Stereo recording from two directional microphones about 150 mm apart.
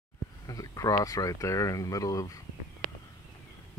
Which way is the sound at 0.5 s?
25° left (ahead or behind).